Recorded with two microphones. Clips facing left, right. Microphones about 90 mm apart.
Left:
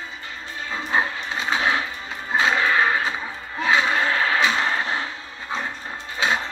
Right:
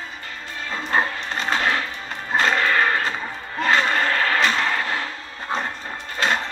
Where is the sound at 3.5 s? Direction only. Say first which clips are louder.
Right 1 dB; 60° right (ahead or behind).